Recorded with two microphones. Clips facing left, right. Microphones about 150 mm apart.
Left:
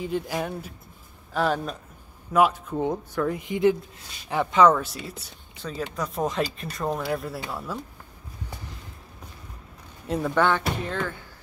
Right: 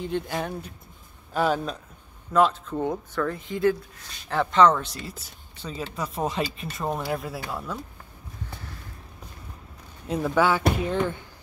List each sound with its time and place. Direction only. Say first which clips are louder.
0.0 s speech: left 1 dB; 5° left (ahead or behind)
2.3 s speech: even; 10° left (ahead or behind)
10.0 s speech: even; centre (ahead or behind)
10.8 s speech: right 4 dB; 15° right (ahead or behind)